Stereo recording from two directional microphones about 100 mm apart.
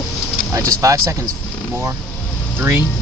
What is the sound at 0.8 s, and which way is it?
Speech, 30° right (ahead or behind).